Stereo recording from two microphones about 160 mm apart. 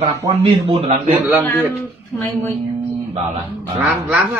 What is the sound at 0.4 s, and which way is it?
Speech, 40° right (ahead or behind).